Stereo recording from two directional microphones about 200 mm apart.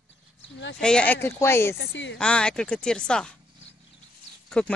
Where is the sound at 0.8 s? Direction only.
5° left (ahead or behind).